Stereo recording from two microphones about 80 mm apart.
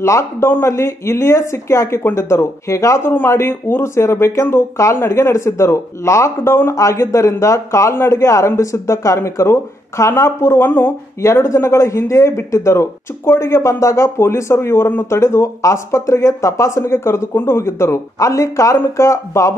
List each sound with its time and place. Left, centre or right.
0.0 s speech: left
3.0 s speech: left
11.2 s speech: left